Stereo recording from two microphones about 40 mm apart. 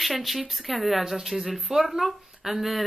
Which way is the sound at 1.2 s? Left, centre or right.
Centre.